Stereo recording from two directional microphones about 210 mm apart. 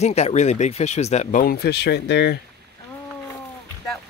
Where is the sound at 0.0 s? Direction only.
30° left (ahead or behind); by 2.3 s 50° left (ahead or behind).